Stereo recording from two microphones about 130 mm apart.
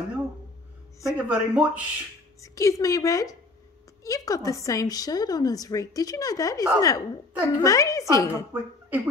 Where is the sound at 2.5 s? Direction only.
25° left (ahead or behind).